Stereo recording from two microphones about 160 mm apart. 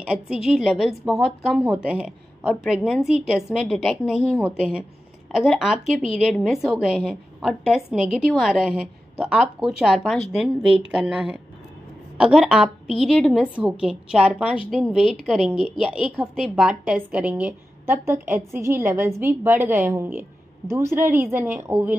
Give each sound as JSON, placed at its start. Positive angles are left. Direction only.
{"t": 0.5, "sound": "a woman's voice", "side_deg": -5}
{"t": 5.4, "sound": "a woman's voice", "side_deg": 0}
{"t": 15.5, "sound": "a woman's voice", "side_deg": 35}
{"t": 15.8, "sound": "a woman's voice", "side_deg": -5}